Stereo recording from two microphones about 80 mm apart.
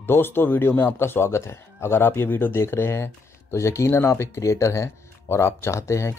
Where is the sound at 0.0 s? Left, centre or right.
Left.